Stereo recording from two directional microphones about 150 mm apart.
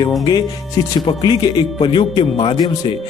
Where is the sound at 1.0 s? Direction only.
30° left (ahead or behind).